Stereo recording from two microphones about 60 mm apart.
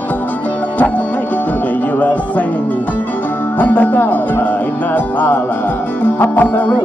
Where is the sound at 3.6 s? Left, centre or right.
Left.